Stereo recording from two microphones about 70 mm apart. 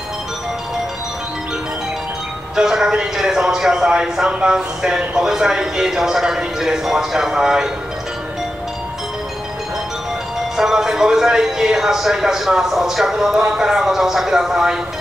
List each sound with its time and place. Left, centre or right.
2.5 s a man's voice: centre
10.5 s speech: centre